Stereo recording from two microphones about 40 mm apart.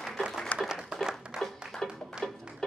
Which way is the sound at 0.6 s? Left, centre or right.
Centre.